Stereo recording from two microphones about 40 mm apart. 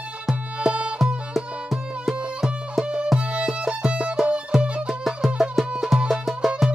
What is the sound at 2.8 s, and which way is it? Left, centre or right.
Music, right.